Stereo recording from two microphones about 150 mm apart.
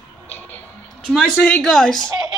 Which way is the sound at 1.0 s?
Centre (ahead or behind).